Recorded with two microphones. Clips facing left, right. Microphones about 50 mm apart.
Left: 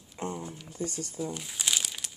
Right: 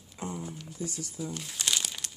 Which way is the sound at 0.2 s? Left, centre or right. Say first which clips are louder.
Left 3 dB; left.